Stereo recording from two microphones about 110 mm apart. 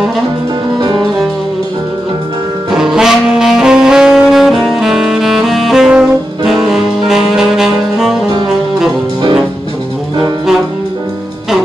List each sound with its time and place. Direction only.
0.7 s music: 40° right (ahead or behind)
2.7 s saxophone: 5° right (ahead or behind)
8.5 s music: 5° right (ahead or behind)